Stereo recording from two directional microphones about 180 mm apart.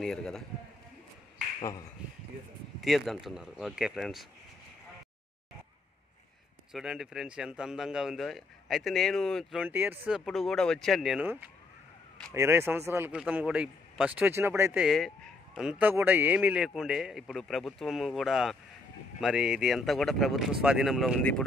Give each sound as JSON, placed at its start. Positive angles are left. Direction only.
{"t": 0.0, "sound": "speech", "side_deg": 5}
{"t": 1.6, "sound": "speech", "side_deg": 20}
{"t": 2.8, "sound": "speech", "side_deg": 0}
{"t": 6.7, "sound": "a man's voice", "side_deg": -5}
{"t": 14.9, "sound": "speech", "side_deg": 0}